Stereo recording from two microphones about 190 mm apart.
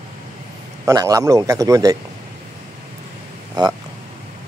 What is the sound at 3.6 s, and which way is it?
Speech, 20° right (ahead or behind).